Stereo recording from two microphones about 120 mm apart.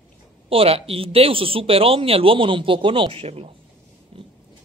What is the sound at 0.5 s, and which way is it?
A man's voice, 50° right (ahead or behind).